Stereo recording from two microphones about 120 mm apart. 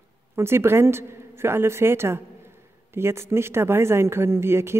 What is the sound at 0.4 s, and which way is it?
A woman's voice, 20° right (ahead or behind).